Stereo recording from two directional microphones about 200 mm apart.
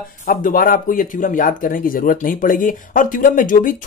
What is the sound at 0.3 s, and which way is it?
Speech, 45° left (ahead or behind).